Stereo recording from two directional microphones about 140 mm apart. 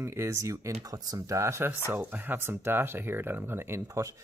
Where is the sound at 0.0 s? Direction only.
20° right (ahead or behind).